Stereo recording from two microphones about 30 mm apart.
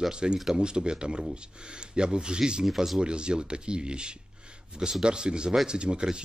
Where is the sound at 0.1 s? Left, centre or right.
Right.